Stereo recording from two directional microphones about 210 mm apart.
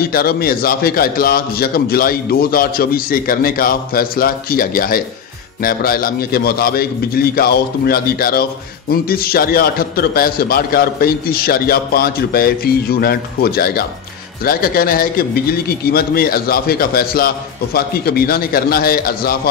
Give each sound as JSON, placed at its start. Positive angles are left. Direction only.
{"t": 0.0, "sound": "a man's voice", "side_deg": 45}